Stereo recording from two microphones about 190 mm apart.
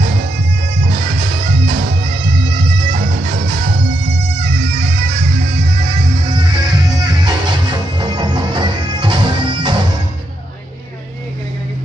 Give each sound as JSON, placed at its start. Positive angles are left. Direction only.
{"t": 2.9, "sound": "music", "side_deg": -40}
{"t": 6.3, "sound": "music", "side_deg": -20}